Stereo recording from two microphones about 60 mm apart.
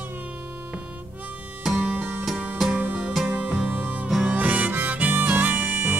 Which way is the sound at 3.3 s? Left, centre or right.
Right.